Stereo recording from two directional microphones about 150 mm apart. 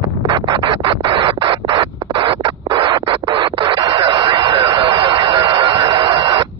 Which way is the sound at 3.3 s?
35° right (ahead or behind).